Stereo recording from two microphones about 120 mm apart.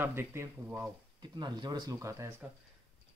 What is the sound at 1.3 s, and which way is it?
Speech, 40° right (ahead or behind).